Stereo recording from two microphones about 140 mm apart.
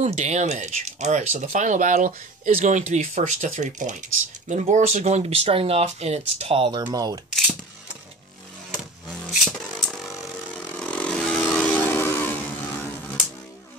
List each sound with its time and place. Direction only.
0.0 s speech: 55° right (ahead or behind)
6.9 s speech: 25° right (ahead or behind)
9.3 s a sound: centre (ahead or behind)
10.8 s vehicle: 5° left (ahead or behind)